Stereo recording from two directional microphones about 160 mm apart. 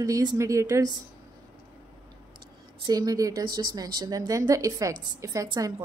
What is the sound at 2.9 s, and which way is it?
A woman's voice, 25° right (ahead or behind).